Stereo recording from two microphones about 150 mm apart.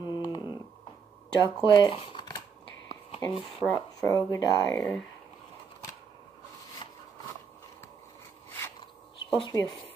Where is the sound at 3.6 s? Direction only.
25° right (ahead or behind).